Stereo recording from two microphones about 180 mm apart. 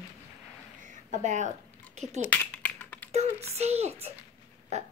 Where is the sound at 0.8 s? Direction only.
45° right (ahead or behind).